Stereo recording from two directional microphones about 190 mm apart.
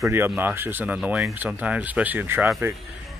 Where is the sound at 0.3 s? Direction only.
10° right (ahead or behind).